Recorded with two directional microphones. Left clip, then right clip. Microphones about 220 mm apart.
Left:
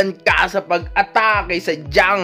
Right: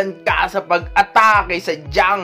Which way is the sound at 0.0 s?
30° left (ahead or behind).